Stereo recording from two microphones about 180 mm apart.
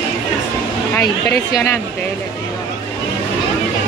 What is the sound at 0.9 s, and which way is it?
Speech, 15° left (ahead or behind).